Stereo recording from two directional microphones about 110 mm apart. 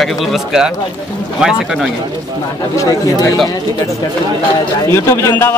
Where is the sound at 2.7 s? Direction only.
30° left (ahead or behind).